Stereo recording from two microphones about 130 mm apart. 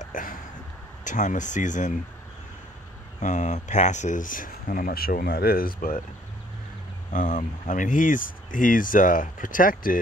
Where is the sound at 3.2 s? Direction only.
70° left (ahead or behind); by 5.9 s 90° left.